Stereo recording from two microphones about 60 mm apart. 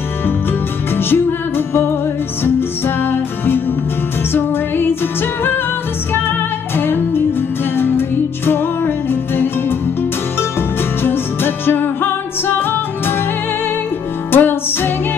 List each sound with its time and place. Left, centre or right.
0.5 s music: left
3.0 s music: left
6.8 s music: left
11.0 s music: left
14.3 s music: left